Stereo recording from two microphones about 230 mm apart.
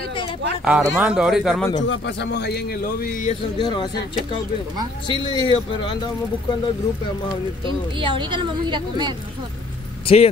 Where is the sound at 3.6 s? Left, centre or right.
Centre.